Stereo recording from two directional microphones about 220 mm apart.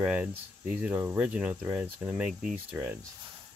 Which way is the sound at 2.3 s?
40° right (ahead or behind).